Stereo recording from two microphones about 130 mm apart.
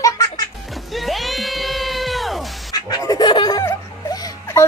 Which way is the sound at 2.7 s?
30° left (ahead or behind).